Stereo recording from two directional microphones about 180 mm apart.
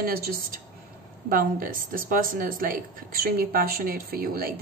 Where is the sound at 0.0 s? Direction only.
55° right (ahead or behind).